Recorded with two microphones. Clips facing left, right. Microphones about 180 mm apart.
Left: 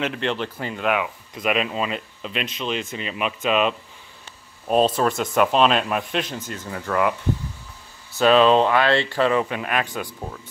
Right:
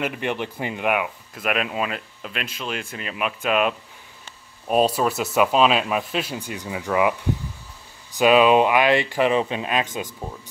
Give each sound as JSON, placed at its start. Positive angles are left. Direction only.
{"t": 0.0, "sound": "speech", "side_deg": -10}